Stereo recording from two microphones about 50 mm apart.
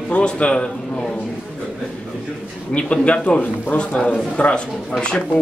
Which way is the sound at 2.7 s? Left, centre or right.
Left.